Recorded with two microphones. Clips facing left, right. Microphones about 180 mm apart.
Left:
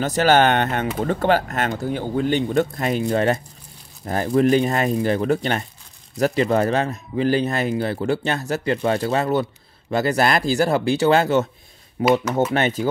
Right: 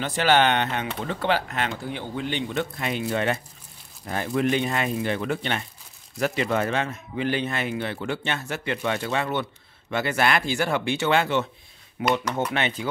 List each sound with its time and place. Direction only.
0.0 s speech: 40° left (ahead or behind)
12.0 s speech: 5° left (ahead or behind)
12.5 s speech: 40° left (ahead or behind)